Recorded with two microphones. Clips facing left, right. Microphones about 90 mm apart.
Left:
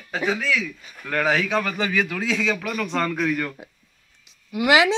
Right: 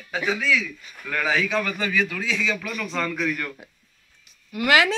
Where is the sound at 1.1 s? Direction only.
55° left (ahead or behind).